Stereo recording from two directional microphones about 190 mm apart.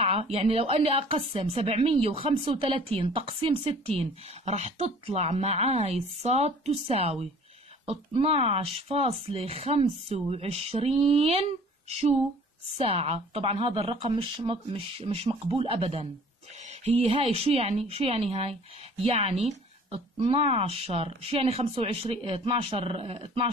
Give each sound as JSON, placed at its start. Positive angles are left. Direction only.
{"t": 0.0, "sound": "speech", "side_deg": -30}